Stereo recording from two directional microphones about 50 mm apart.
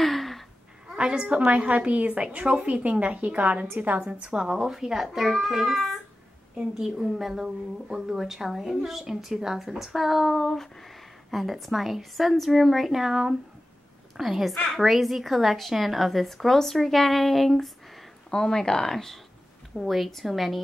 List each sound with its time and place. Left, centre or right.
0.0 s a sound: centre
0.9 s a woman's voice: right
4.1 s a child's voice: centre
19.8 s a woman's voice: centre